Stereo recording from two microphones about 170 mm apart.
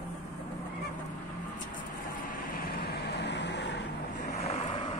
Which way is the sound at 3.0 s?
85° left.